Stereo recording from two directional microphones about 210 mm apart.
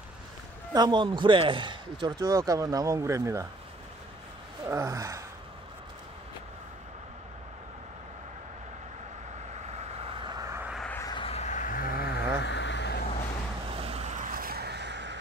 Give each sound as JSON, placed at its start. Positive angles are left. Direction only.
{"t": 0.7, "sound": "speech", "side_deg": -20}
{"t": 4.6, "sound": "gasp", "side_deg": -15}
{"t": 9.7, "sound": "vehicle", "side_deg": -30}
{"t": 10.9, "sound": "a sound", "side_deg": 15}
{"t": 13.7, "sound": "vehicle", "side_deg": -30}